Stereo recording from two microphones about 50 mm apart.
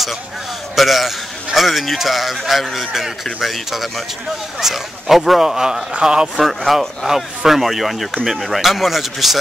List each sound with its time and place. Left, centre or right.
0.7 s a man's voice: centre
6.3 s a man's voice: centre